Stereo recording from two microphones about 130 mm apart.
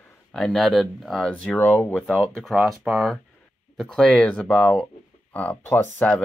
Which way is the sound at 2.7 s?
Centre (ahead or behind).